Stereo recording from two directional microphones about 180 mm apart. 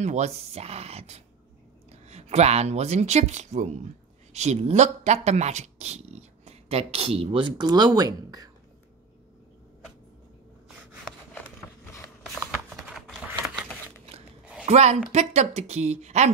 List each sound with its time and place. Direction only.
0.0 s speech: 40° right (ahead or behind); by 8.5 s 20° right (ahead or behind)
12.4 s typing: centre (ahead or behind)
14.4 s a sound: 5° right (ahead or behind)
14.7 s speech: 40° right (ahead or behind)